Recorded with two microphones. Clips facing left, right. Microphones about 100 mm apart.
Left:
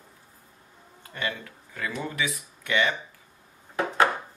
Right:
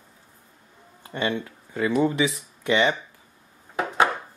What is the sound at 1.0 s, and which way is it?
Speech, 25° right (ahead or behind).